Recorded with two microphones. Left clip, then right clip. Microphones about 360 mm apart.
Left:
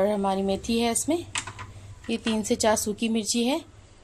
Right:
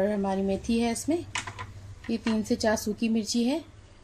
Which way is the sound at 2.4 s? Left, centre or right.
Left.